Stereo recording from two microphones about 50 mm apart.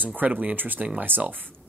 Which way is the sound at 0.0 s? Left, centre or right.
Right.